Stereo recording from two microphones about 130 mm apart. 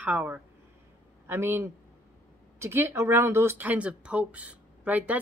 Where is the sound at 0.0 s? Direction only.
15° right (ahead or behind).